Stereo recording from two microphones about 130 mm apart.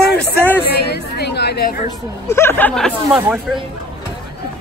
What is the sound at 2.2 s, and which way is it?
Speech, 20° left (ahead or behind).